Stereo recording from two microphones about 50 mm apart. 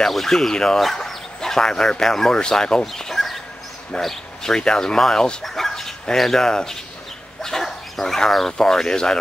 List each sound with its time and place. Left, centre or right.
0.0 s speech: centre